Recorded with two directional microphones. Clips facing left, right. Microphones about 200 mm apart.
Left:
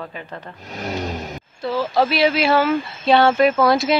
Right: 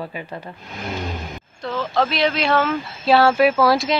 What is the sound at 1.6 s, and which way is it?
Speech, 5° left (ahead or behind).